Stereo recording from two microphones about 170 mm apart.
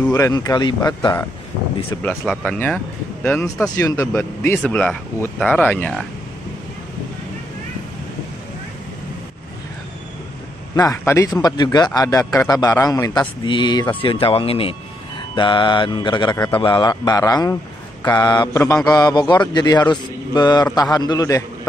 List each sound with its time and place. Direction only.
0.1 s a man's voice: 20° left (ahead or behind)
2.0 s speech: 10° left (ahead or behind)
10.8 s a man's voice: 20° left (ahead or behind)